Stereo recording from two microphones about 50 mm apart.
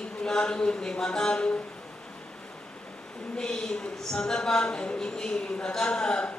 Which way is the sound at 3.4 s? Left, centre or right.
Centre.